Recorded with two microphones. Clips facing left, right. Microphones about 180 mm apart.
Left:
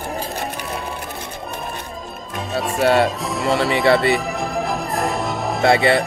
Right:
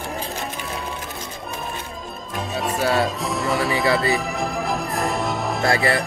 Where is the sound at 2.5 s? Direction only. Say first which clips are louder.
Left 5 dB; centre (ahead or behind).